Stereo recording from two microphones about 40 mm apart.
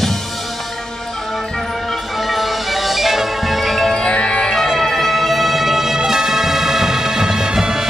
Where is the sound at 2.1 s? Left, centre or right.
Centre.